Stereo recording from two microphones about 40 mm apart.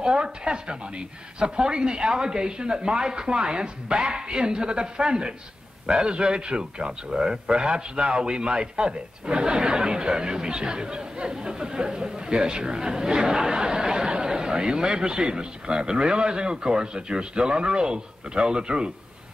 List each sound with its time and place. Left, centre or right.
0.0 s a man's voice: right